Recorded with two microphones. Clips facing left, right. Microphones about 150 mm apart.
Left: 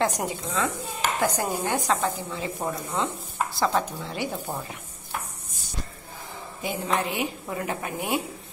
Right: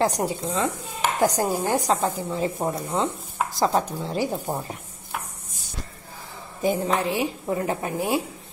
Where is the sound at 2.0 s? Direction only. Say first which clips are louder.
Right 4 dB; 25° right (ahead or behind).